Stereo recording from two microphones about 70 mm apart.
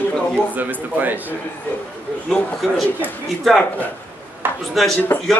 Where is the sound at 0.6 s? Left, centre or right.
Right.